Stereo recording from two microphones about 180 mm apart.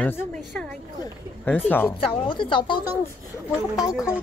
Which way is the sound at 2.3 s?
25° left (ahead or behind).